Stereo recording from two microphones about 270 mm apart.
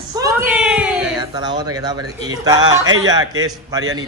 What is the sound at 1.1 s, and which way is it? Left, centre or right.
A woman's voice, centre.